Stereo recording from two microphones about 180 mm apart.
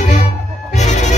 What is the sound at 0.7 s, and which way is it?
Music, 40° left (ahead or behind).